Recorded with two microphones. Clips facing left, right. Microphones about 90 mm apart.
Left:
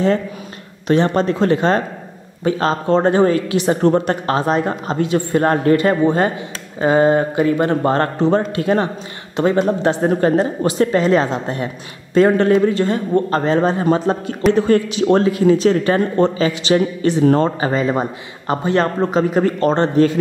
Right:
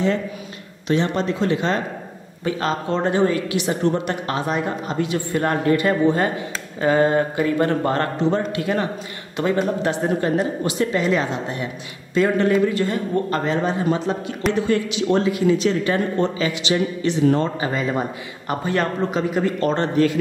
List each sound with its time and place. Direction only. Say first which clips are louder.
0.8 s a woman's voice: left 5 dB; 45° left (ahead or behind)